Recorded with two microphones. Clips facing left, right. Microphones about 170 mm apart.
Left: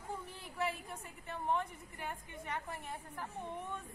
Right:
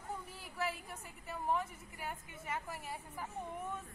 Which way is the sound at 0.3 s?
5° right (ahead or behind).